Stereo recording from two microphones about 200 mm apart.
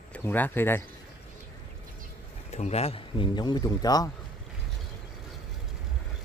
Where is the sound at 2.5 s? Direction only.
35° left (ahead or behind).